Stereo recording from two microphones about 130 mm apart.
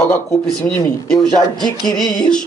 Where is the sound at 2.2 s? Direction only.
5° left (ahead or behind).